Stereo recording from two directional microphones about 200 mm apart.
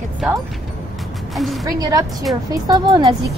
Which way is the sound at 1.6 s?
15° right (ahead or behind).